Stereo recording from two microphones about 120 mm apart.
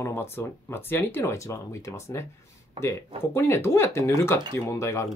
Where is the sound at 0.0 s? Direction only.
20° left (ahead or behind).